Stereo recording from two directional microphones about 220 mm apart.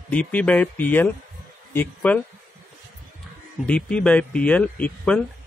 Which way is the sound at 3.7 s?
5° left (ahead or behind).